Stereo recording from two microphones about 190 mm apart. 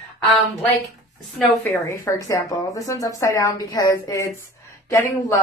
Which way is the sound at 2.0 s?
15° left (ahead or behind).